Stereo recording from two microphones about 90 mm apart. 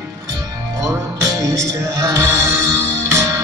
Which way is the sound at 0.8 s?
35° right (ahead or behind).